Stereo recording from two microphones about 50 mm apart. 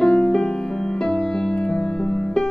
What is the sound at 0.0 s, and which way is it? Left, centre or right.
Music, centre.